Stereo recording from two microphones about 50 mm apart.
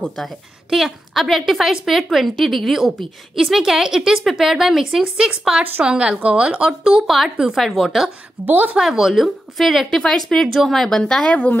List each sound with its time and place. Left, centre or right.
0.2 s a woman's voice: centre
5.0 s a woman's voice: centre
6.8 s a woman's voice: centre
7.5 s a woman's voice: centre
8.5 s speech: right
8.7 s a woman's voice: centre
9.6 s a woman's voice: centre; by 11.5 s left